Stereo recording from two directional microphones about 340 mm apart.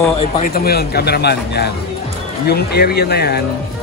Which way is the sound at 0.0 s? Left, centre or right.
Centre.